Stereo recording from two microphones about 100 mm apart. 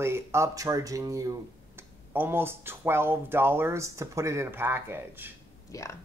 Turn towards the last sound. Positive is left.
turn(degrees=-20)  # may be behind; listen again after turning